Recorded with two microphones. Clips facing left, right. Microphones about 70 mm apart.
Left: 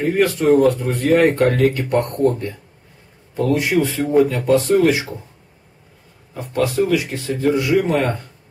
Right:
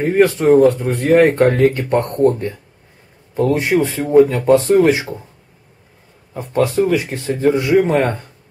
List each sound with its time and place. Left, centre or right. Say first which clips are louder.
0.0 s a man's voice: right 3 dB; right
3.3 s a man's voice: right 2 dB; right
6.3 s a man's voice: right 3 dB; right